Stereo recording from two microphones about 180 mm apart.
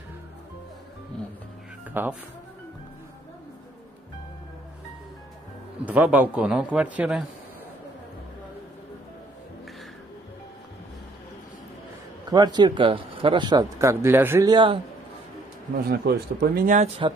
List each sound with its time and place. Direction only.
1.9 s speech: 10° right (ahead or behind)
5.9 s a man's voice: 10° right (ahead or behind)
12.3 s speech: 25° right (ahead or behind)
14.5 s speech: 25° right (ahead or behind)
15.9 s speech: 60° right (ahead or behind)